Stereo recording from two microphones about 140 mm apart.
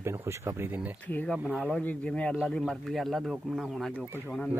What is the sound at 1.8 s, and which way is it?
Speech, 10° left (ahead or behind).